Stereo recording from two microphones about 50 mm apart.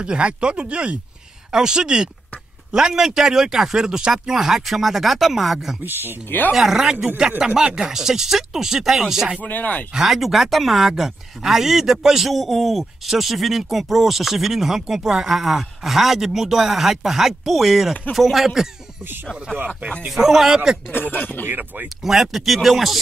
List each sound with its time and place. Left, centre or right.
0.0 s speech: centre
5.9 s speech: right
6.5 s speech: centre
9.4 s speech: left
9.9 s speech: centre
19.5 s speech: centre
20.1 s speech: centre
20.9 s speech: left
21.5 s speech: right
22.0 s speech: centre